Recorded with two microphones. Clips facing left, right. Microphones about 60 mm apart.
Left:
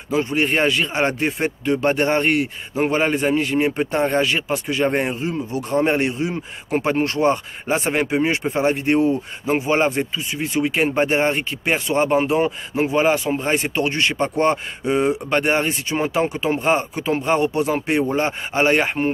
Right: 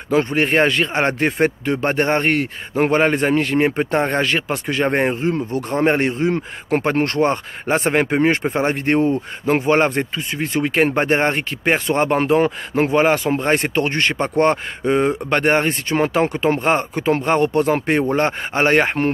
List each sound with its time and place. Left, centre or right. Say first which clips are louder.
0.1 s speech: right 3 dB; right